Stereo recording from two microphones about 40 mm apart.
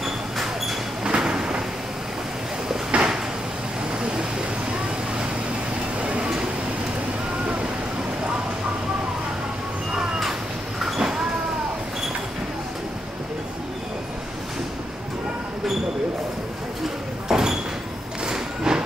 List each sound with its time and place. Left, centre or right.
0.0 s a sound: centre
1.0 s a sound: centre
2.9 s cupboard open or close: right
4.0 s vehicle: right
5.9 s vehicle: right
11.0 s sliding door: centre
17.3 s door: centre
18.2 s music: centre